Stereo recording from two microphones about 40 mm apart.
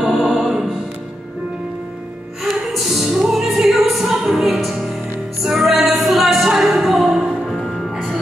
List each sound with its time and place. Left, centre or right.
0.0 s music: centre
2.8 s music: centre
3.4 s music: centre